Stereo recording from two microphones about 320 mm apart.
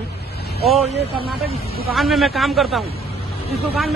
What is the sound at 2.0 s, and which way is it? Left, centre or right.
Speech, centre.